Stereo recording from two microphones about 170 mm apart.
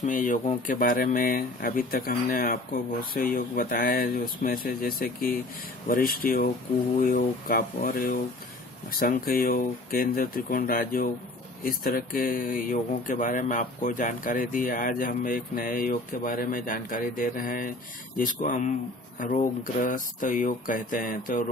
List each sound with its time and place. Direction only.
0.0 s speech: 50° left (ahead or behind)